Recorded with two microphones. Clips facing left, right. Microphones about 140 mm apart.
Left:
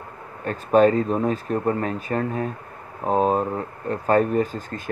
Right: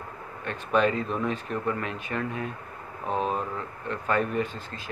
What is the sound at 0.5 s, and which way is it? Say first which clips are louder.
Speech: left 8 dB; 40° left (ahead or behind).